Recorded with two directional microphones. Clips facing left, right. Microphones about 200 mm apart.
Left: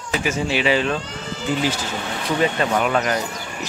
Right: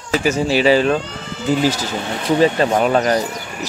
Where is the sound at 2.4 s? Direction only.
35° right (ahead or behind).